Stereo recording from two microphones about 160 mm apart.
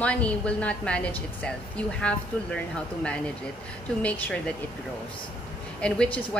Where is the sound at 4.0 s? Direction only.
10° left (ahead or behind).